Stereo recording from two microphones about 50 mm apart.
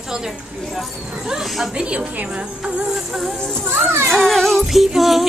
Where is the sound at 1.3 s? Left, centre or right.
Centre.